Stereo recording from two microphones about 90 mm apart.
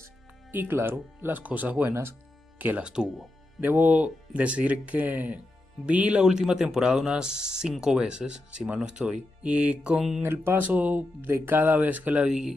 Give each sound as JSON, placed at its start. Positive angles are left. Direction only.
{"t": 0.0, "sound": "speech", "side_deg": -25}
{"t": 2.9, "sound": "speech", "side_deg": -10}
{"t": 10.2, "sound": "speech", "side_deg": -25}
{"t": 12.3, "sound": "speech", "side_deg": -5}